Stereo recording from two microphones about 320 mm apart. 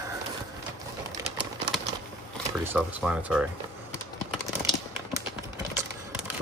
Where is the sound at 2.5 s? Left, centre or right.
Centre.